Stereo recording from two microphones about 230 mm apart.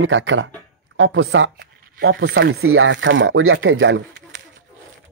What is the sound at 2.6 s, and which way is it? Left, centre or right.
Speech, right.